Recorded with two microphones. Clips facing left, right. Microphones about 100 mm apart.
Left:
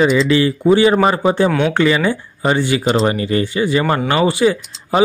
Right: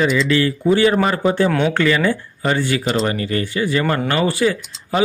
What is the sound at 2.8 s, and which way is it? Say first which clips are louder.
Speech: left 4 dB; 35° left (ahead or behind).